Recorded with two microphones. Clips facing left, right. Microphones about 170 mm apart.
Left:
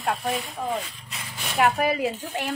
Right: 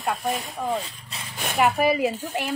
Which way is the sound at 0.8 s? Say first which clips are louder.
Right 1 dB; 30° right (ahead or behind).